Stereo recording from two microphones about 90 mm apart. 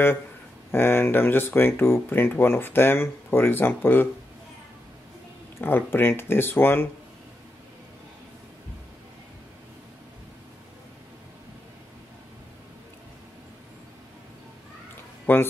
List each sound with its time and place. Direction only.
0.7 s speech: 25° left (ahead or behind)
5.6 s speech: 25° left (ahead or behind)
15.3 s speech: 20° left (ahead or behind)